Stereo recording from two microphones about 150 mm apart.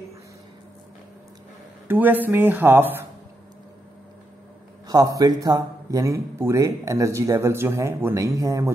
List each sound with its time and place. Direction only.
1.9 s speech: 10° right (ahead or behind)
4.8 s a man's voice: 25° right (ahead or behind)